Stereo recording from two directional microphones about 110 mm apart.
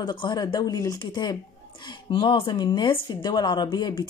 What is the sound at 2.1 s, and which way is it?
Speech, 50° left (ahead or behind).